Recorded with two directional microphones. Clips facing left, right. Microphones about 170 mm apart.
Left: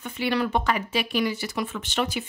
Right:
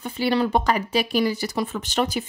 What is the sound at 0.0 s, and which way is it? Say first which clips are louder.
A woman's voice: right 4 dB; 35° right (ahead or behind).